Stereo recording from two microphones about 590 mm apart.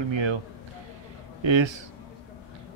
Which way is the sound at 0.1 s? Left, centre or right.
Right.